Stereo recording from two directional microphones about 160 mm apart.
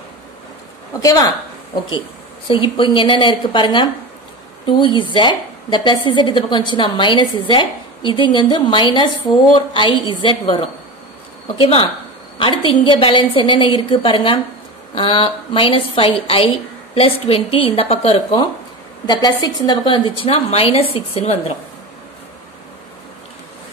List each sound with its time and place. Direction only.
1.0 s a woman's voice: 20° left (ahead or behind)
2.4 s a woman's voice: 30° left (ahead or behind)